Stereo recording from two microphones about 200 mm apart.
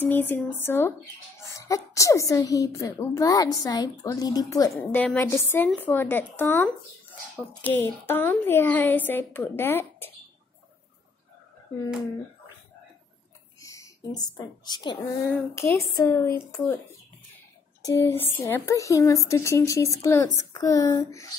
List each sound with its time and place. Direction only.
0.0 s a woman's voice: 10° left (ahead or behind)
13.6 s a woman's voice: 15° left (ahead or behind)
17.8 s a woman's voice: 15° left (ahead or behind)